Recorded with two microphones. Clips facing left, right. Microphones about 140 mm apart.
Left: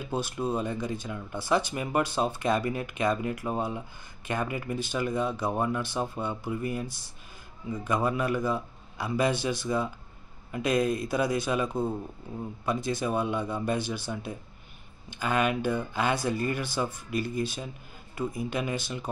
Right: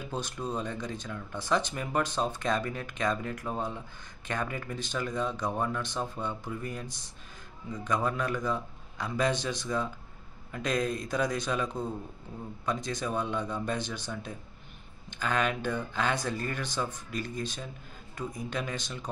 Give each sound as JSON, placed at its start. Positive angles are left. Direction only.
{"t": 0.1, "sound": "speech", "side_deg": 5}